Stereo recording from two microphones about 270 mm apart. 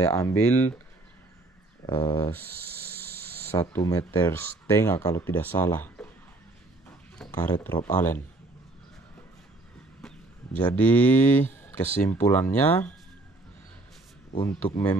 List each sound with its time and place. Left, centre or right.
0.0 s speech: centre
1.9 s speech: centre
3.5 s speech: centre
7.2 s speech: centre
10.0 s speech: centre
14.3 s speech: left